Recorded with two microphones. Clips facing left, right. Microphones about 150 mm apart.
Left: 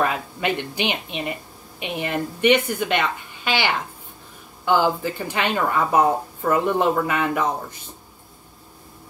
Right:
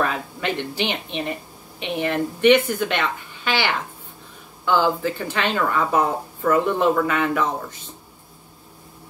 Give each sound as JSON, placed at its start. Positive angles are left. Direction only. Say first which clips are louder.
{"t": 0.0, "sound": "a woman's voice", "louder": "left 1 dB", "side_deg": 15}